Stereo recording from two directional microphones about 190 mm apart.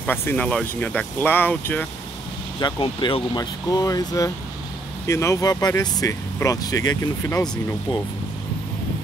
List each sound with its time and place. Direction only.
0.0 s speech: 10° left (ahead or behind)
2.6 s speech: 25° left (ahead or behind)